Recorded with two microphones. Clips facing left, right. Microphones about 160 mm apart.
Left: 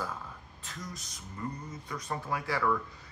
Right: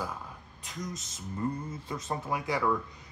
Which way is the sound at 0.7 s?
20° right (ahead or behind).